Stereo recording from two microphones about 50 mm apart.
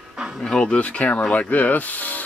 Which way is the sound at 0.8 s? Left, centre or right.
Left.